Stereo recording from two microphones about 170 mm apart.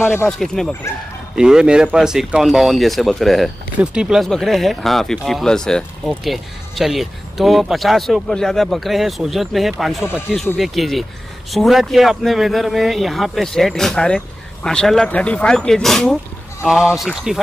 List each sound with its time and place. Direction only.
0.3 s speech: 5° left (ahead or behind)